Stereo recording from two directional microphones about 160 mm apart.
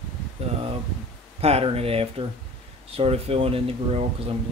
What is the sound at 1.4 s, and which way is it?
Speech, 40° right (ahead or behind).